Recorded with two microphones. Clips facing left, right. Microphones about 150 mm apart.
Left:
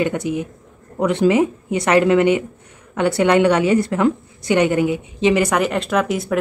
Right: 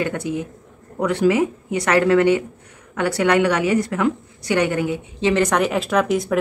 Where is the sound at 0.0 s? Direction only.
20° left (ahead or behind).